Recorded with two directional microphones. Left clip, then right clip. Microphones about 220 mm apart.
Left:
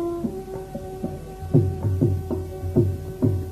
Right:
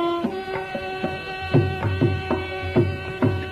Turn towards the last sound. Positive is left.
turn(degrees=-30)  # may be behind; listen again after turning